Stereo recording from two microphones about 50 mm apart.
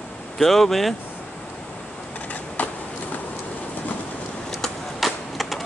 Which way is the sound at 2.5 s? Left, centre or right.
Left.